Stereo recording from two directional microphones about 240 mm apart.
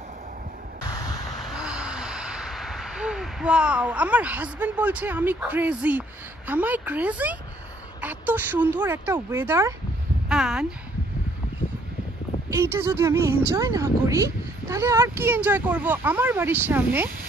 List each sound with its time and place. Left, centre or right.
0.8 s static: centre
1.4 s speech: centre
12.4 s speech: centre